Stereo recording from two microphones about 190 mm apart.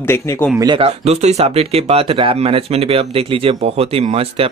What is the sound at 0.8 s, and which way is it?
Speech, 35° right (ahead or behind).